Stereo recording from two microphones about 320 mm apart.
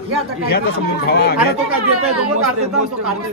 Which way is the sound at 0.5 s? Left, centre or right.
Left.